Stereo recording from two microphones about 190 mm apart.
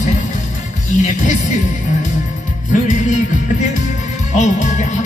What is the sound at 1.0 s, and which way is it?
Speech, 40° left (ahead or behind).